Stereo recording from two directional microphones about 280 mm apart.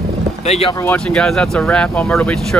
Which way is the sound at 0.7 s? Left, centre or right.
Centre.